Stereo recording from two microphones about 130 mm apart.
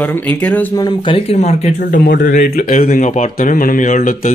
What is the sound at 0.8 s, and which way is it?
Speech, 35° left (ahead or behind).